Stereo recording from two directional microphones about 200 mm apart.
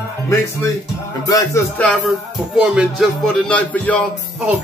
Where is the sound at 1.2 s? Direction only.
15° left (ahead or behind).